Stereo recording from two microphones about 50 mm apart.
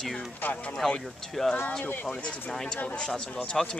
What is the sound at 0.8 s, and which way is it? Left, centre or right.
Speech, centre.